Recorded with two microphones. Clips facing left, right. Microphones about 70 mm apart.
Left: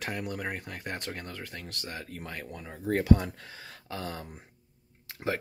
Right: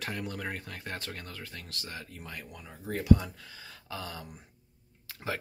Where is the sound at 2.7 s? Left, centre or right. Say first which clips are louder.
Left 1 dB; left.